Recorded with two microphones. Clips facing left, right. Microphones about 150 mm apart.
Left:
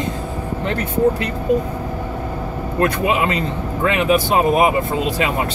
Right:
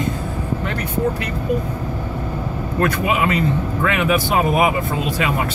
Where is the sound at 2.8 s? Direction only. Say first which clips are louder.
Left 1 dB; 25° left (ahead or behind).